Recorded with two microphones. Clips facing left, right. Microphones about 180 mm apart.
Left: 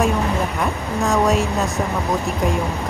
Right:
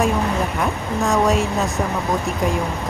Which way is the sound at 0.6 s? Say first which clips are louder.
Even; centre (ahead or behind).